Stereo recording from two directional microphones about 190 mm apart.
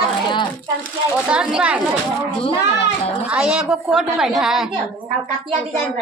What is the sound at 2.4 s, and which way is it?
Speech, 30° left (ahead or behind).